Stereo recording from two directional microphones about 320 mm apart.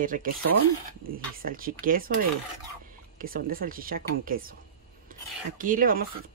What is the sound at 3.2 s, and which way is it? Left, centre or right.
Speech, right.